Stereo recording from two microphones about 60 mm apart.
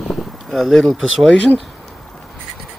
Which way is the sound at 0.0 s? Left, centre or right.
Centre.